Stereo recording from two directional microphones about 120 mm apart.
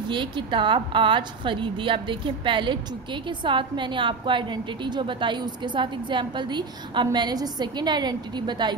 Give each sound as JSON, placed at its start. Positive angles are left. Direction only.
{"t": 0.1, "sound": "a woman's voice", "side_deg": -40}